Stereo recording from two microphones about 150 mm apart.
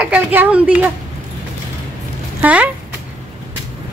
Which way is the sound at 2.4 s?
10° right (ahead or behind).